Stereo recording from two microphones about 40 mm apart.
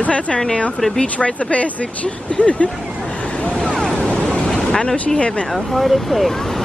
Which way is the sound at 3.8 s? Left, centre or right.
Centre.